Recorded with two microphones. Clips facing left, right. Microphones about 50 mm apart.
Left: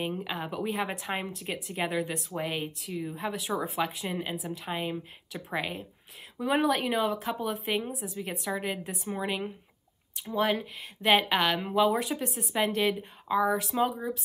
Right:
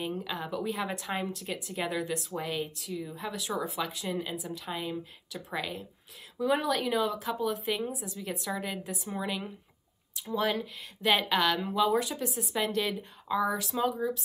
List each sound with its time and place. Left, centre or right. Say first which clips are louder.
0.0 s speech: left 2 dB; centre
2.3 s a woman's voice: left 1 dB; left
3.3 s speech: even; centre
4.1 s a woman's voice: left 1 dB; left
7.9 s a woman's voice: left 2 dB; centre
8.2 s a woman's voice: left 2 dB; centre
8.8 s a woman's voice: left 1 dB; centre
9.1 s a woman's voice: left 3 dB; centre
10.1 s speech: left 2 dB; centre
12.5 s speech: left 4 dB; centre